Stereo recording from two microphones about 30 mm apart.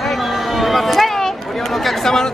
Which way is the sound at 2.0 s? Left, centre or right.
Centre.